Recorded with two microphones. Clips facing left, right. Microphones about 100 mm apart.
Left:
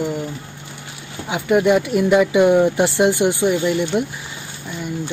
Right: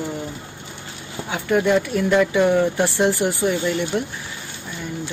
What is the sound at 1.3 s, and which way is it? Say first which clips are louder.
Speech: left 3 dB; 10° left (ahead or behind).